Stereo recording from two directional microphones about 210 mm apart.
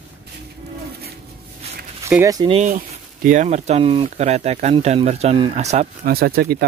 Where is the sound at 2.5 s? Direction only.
35° right (ahead or behind).